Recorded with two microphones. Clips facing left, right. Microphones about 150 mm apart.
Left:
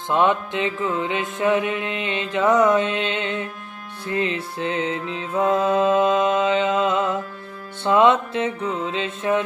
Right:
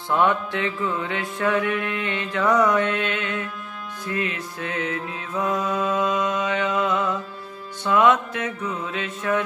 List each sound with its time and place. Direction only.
0.1 s mantra: 20° left (ahead or behind)